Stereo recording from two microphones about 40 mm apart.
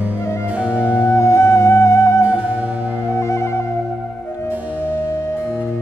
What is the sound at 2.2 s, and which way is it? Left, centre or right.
Music, right.